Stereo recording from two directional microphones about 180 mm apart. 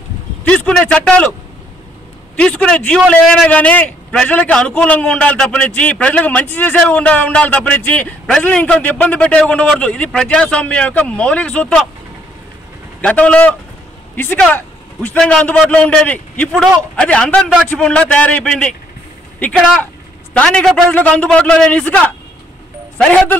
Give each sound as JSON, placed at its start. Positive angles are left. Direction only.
{"t": 0.5, "sound": "a man's voice", "side_deg": 5}
{"t": 2.3, "sound": "a man's voice", "side_deg": 5}
{"t": 13.0, "sound": "a man's voice", "side_deg": 5}
{"t": 20.3, "sound": "a man's voice", "side_deg": 5}